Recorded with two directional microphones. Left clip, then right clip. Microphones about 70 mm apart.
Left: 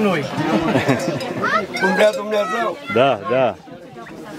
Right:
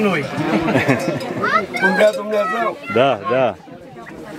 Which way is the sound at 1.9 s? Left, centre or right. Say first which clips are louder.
Even; left.